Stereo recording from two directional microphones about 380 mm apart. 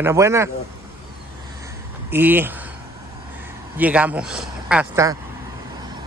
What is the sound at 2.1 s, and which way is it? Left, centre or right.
Speech, centre.